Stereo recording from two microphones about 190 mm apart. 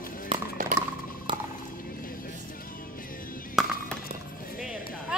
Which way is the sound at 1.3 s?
25° right (ahead or behind).